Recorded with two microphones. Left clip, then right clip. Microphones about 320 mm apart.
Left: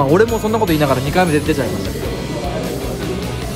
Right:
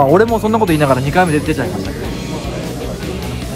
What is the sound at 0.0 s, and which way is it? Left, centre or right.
Speech, centre.